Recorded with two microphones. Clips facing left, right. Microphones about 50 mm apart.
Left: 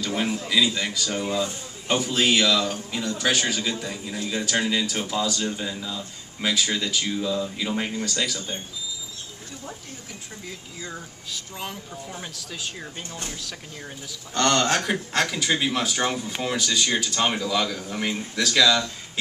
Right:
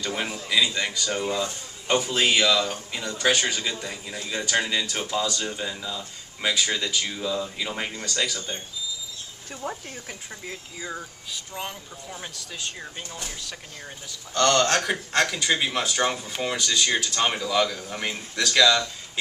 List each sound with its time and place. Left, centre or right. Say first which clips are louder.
0.0 s a man's voice: left 3 dB; centre
10.8 s a man's voice: right 3 dB; centre
14.3 s speech: right 1 dB; left
14.9 s a man's voice: even; centre